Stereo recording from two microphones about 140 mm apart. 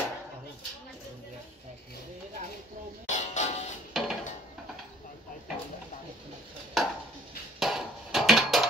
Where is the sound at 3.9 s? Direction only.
Centre (ahead or behind).